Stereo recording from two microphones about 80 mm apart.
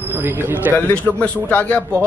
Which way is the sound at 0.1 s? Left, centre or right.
Right.